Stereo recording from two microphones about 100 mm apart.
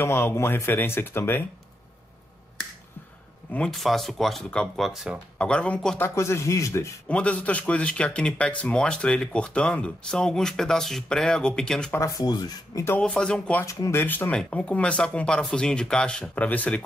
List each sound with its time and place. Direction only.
0.0 s speech: 25° left (ahead or behind)
3.5 s speech: 5° left (ahead or behind)
5.4 s speech: 10° left (ahead or behind)
5.9 s speech: 25° left (ahead or behind)
7.1 s speech: 15° left (ahead or behind)
11.9 s speech: 30° left (ahead or behind)
13.0 s speech: 5° left (ahead or behind)
13.7 s speech: 30° left (ahead or behind)
14.0 s speech: 20° left (ahead or behind)